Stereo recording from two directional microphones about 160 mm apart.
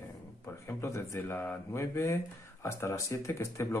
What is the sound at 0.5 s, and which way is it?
Speech, 15° left (ahead or behind).